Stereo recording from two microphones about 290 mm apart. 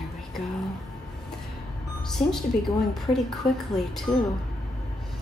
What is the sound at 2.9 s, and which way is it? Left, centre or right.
Speech, centre.